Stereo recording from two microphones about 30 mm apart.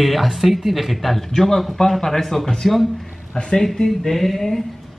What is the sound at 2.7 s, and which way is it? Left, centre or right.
Speech, centre.